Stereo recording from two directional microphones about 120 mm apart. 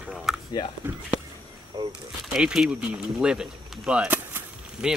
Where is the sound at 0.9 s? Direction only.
15° right (ahead or behind).